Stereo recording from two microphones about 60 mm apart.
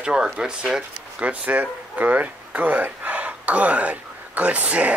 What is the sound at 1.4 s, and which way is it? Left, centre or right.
Speech, right.